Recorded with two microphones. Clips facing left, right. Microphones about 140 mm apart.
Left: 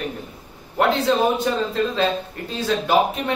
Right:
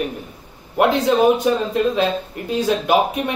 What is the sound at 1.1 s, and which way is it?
Speech, 15° right (ahead or behind).